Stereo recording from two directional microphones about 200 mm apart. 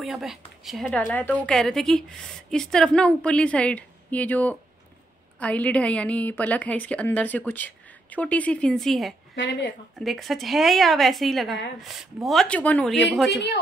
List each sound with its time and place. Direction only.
0.0 s a woman's voice: centre (ahead or behind)
9.3 s speech: 65° left (ahead or behind)
9.9 s a woman's voice: centre (ahead or behind)